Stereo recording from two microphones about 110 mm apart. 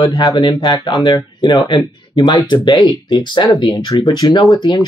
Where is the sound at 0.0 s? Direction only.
35° left (ahead or behind).